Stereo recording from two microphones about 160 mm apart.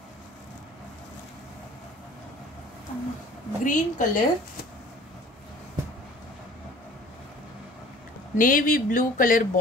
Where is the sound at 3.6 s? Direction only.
55° left (ahead or behind).